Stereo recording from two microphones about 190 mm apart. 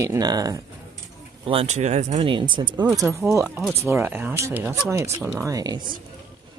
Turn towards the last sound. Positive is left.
turn(degrees=-20)  # may be behind; listen again after turning